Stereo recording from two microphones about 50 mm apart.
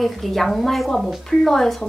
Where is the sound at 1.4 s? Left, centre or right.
Centre.